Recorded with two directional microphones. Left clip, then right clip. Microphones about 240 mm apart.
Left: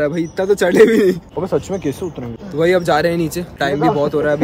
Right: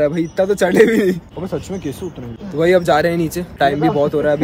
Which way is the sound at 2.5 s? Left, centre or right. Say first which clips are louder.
Right 1 dB; centre.